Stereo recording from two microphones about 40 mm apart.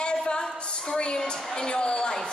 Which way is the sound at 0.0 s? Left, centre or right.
Left.